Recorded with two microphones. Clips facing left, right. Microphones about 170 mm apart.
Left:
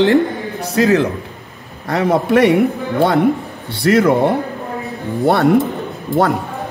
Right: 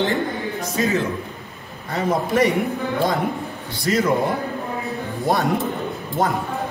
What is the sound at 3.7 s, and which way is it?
A man's voice, 70° left (ahead or behind).